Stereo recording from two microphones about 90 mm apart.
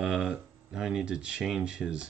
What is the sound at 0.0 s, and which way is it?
Speech, 10° right (ahead or behind).